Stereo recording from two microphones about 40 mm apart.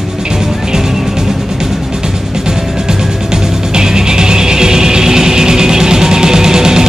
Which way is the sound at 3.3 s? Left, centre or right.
Centre.